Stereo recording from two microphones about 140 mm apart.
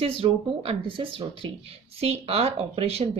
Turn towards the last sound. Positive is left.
turn(degrees=-45)  # may be behind; listen again after turning